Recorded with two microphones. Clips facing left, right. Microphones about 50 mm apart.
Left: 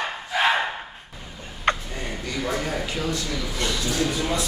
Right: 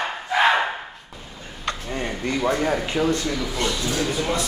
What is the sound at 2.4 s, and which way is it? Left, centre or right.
Speech, right.